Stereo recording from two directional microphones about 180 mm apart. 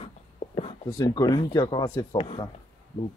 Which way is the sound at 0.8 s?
20° left (ahead or behind).